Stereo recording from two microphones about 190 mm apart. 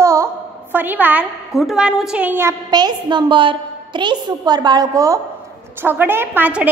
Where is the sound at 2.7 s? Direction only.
20° right (ahead or behind).